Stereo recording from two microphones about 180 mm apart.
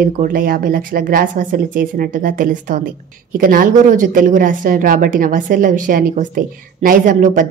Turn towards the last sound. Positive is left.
turn(degrees=-45)  # may be behind; listen again after turning